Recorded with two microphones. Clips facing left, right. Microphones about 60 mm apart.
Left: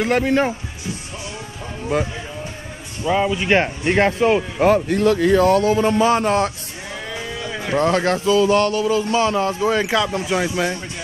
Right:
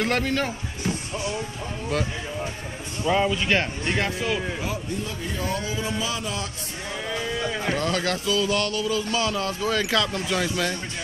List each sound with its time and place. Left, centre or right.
0.0 s speech: centre
0.3 s speech: left
1.9 s speech: left
3.1 s speech: centre
3.4 s speech: left
4.6 s speech: left
5.6 s a man's voice: left
7.1 s a sound: centre
7.7 s speech: left